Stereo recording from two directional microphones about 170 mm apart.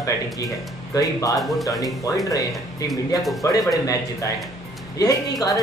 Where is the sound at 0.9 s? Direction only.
20° left (ahead or behind).